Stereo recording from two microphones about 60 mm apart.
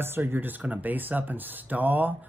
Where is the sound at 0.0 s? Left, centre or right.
Right.